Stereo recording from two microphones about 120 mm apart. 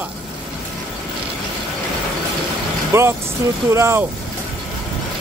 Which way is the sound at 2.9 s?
25° right (ahead or behind).